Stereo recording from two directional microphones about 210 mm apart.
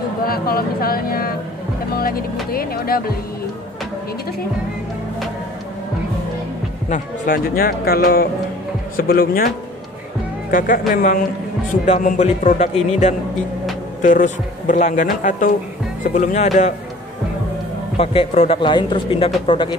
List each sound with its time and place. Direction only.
0.3 s a man's voice: 45° left (ahead or behind)
2.0 s music: 45° left (ahead or behind)
2.5 s a man's voice: 45° left (ahead or behind)
6.9 s a man's voice: 40° left (ahead or behind)
10.9 s a man's voice: 40° left (ahead or behind)
17.9 s speech: 25° left (ahead or behind)